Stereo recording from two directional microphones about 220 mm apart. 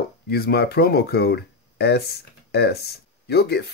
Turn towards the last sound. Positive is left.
turn(degrees=45)  # may be behind; listen again after turning